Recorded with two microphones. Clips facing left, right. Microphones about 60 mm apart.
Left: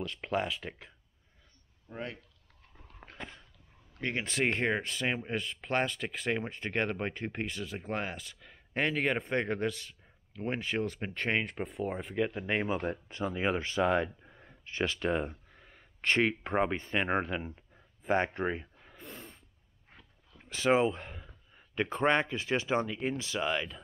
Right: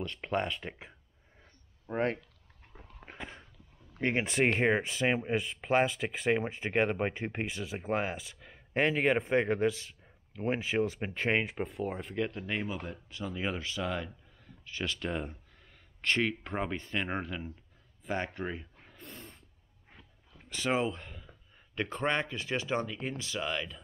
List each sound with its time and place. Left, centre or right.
0.0 s speech: centre
1.9 s speech: right
3.1 s a sound: right
3.9 s speech: right; by 18.7 s left
18.9 s a sound: centre
21.7 s speech: left